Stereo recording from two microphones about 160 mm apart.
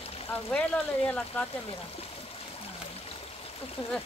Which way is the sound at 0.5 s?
5° left (ahead or behind).